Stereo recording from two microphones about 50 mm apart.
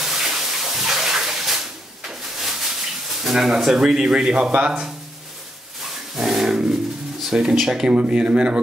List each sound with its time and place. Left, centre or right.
0.0 s a sound: centre
4.5 s speech: right
5.8 s dog: centre
7.2 s speech: centre